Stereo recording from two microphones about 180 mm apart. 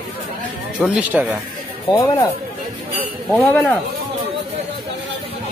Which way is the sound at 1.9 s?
25° left (ahead or behind).